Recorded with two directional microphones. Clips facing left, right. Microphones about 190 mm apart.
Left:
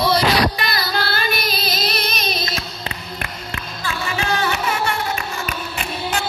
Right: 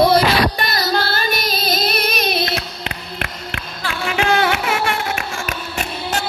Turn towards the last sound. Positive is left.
turn(degrees=-45)  # may be behind; listen again after turning